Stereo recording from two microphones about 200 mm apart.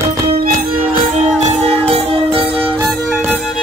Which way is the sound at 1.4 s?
35° right (ahead or behind).